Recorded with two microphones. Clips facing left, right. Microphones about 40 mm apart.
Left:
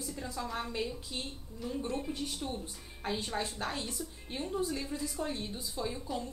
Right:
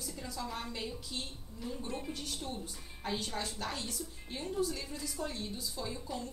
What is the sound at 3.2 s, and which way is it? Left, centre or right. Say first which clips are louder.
A woman's voice: left 3 dB; left.